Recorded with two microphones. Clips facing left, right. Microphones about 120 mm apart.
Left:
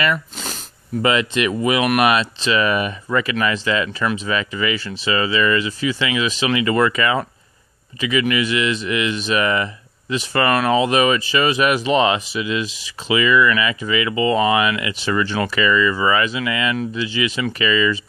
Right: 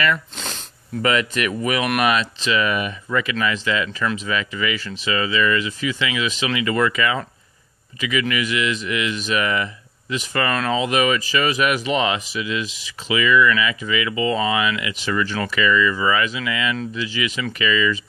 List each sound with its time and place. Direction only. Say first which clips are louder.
0.1 s a sound: left 1 dB; 5° left (ahead or behind)
1.0 s speech: left 2 dB; 25° left (ahead or behind)
1.8 s speech: left 4 dB; 10° left (ahead or behind)
2.1 s speech: left 2 dB; 35° left (ahead or behind)
10.5 s speech: left 6 dB; 15° left (ahead or behind)
10.8 s speech: left 3 dB; 30° left (ahead or behind)